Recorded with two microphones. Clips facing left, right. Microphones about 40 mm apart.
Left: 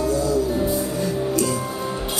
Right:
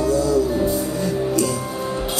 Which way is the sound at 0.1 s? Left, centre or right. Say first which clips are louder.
Right 5 dB; left.